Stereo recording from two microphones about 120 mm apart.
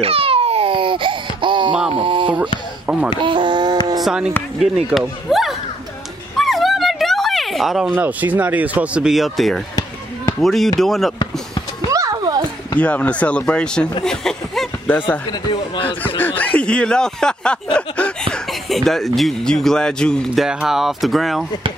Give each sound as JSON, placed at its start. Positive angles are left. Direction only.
{"t": 0.0, "sound": "a sound", "side_deg": -55}
{"t": 4.0, "sound": "speech", "side_deg": -5}
{"t": 5.3, "sound": "a sound", "side_deg": 0}
{"t": 7.9, "sound": "speech", "side_deg": -15}
{"t": 11.9, "sound": "music", "side_deg": -30}
{"t": 12.7, "sound": "speech", "side_deg": 10}
{"t": 14.0, "sound": "chuckle", "side_deg": 5}
{"t": 14.9, "sound": "speech", "side_deg": 15}
{"t": 15.3, "sound": "speech", "side_deg": 35}
{"t": 16.2, "sound": "speech", "side_deg": 15}